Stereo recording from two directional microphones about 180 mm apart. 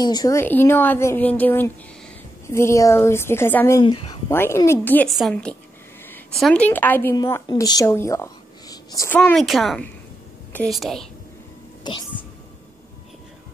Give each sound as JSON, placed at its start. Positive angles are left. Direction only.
{"t": 0.0, "sound": "a woman's voice", "side_deg": 20}
{"t": 3.8, "sound": "speech", "side_deg": 30}
{"t": 4.3, "sound": "a woman's voice", "side_deg": 15}